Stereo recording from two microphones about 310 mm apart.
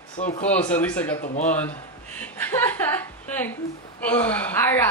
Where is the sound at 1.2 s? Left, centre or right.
Left.